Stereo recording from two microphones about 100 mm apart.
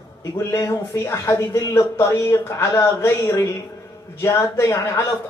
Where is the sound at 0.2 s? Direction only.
30° left (ahead or behind).